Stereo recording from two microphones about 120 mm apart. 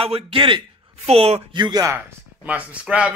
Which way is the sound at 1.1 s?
60° right (ahead or behind).